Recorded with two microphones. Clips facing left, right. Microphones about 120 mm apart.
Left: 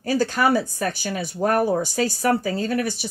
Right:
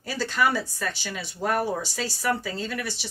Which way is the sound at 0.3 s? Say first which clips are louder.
Left 4 dB; 45° left (ahead or behind).